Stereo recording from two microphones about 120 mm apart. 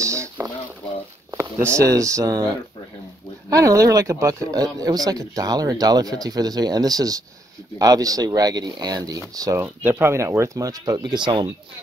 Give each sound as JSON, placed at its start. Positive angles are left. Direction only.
{"t": 0.0, "sound": "a sound", "side_deg": -25}
{"t": 1.8, "sound": "speech", "side_deg": -25}
{"t": 9.6, "sound": "speech", "side_deg": -15}